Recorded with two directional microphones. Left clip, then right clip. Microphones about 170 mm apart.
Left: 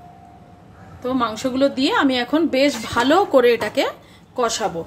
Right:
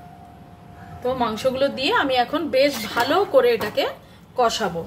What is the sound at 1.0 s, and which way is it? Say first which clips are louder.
A woman's voice: even; 50° left (ahead or behind).